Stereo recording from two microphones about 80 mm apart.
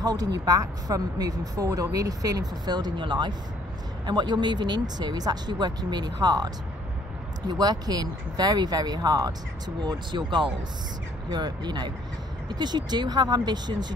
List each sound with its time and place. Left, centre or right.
0.0 s speech: right
9.8 s speech: right
11.3 s speech: right